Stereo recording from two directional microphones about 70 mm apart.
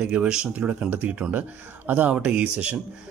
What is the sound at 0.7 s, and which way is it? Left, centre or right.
A man's voice, right.